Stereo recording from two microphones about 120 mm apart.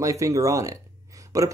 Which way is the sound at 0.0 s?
25° right (ahead or behind).